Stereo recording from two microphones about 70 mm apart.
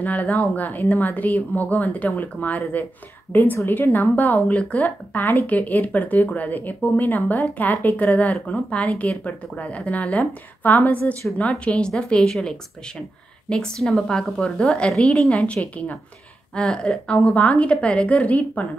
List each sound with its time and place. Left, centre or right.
0.0 s a woman's voice: left; by 15.2 s centre
15.2 s a woman's voice: centre
16.5 s speech: centre
17.3 s a woman's voice: left